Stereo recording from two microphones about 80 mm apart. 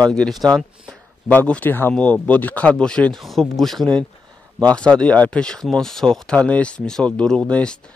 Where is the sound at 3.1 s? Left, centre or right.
Centre.